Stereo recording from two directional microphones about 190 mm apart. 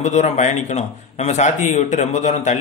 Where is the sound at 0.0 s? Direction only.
40° left (ahead or behind).